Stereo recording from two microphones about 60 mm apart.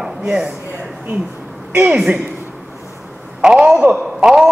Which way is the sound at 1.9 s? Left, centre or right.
Centre.